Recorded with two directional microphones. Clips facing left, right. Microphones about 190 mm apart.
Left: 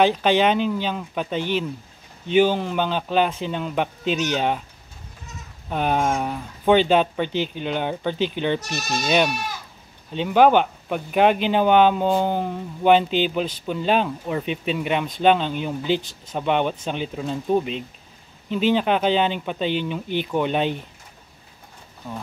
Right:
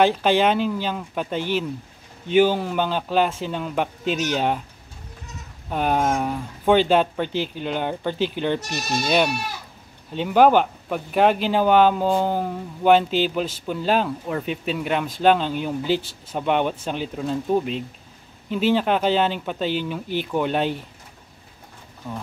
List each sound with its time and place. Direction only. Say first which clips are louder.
0.0 s speech: even; 5° right (ahead or behind)
4.0 s speech: left 2 dB; 45° right (ahead or behind)
4.3 s speech: even; 5° right (ahead or behind)
5.7 s speech: even; 5° right (ahead or behind)